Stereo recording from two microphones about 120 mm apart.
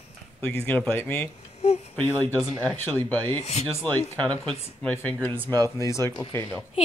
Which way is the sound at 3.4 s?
65° left (ahead or behind).